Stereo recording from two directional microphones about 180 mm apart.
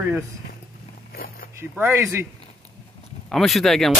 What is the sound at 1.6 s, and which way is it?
Speech, 10° right (ahead or behind).